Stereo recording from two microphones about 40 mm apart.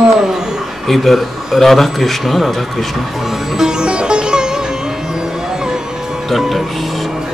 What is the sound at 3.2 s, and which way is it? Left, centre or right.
Music, centre.